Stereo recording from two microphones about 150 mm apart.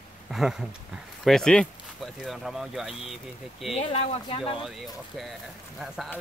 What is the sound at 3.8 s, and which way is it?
Speech, 40° left (ahead or behind).